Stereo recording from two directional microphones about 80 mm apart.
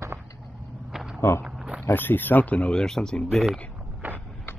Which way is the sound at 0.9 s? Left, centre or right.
Centre.